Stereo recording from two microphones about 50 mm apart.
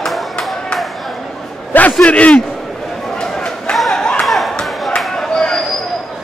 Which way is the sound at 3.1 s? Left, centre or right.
Centre.